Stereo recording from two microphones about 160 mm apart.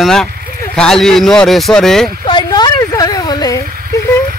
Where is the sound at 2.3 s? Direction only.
25° left (ahead or behind).